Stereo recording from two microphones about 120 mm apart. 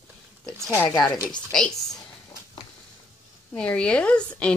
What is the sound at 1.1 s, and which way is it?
Speech, 30° left (ahead or behind).